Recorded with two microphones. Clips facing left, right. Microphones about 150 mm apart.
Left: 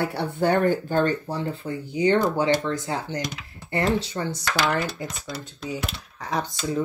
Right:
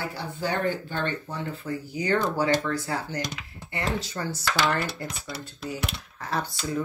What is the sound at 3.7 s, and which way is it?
Speech, 40° left (ahead or behind).